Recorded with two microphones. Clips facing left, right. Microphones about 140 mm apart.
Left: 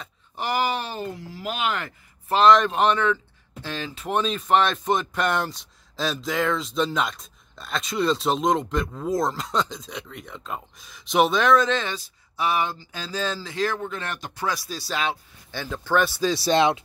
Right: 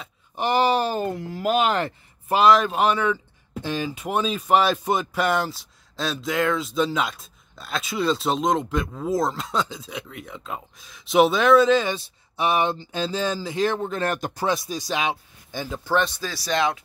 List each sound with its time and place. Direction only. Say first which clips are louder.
0.4 s speech: right 5 dB; 25° right (ahead or behind)
2.2 s speech: even; 10° right (ahead or behind)
11.9 s speech: right 5 dB; 20° right (ahead or behind)
13.8 s speech: right 7 dB; 40° right (ahead or behind)
14.4 s speech: right 2 dB; 20° right (ahead or behind)
15.9 s speech: left 1 dB; 5° left (ahead or behind)
16.2 s speech: left 5 dB; 20° left (ahead or behind)